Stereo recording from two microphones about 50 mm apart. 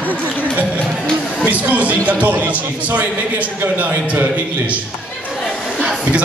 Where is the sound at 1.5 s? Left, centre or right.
Right.